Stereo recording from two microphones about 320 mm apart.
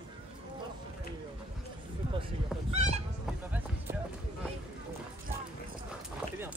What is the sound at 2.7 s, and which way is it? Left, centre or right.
Honk, right.